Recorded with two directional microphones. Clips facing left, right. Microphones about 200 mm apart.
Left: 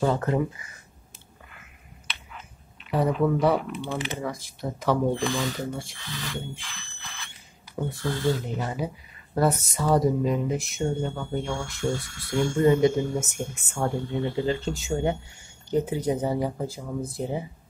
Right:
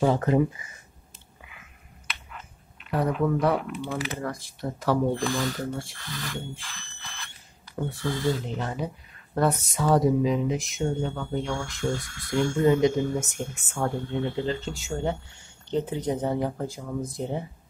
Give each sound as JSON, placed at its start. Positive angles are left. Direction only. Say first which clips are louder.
{"t": 0.0, "sound": "speech", "louder": "right 2 dB", "side_deg": -15}
{"t": 2.9, "sound": "speech", "louder": "left 2 dB", "side_deg": 0}
{"t": 7.8, "sound": "speech", "louder": "even", "side_deg": 5}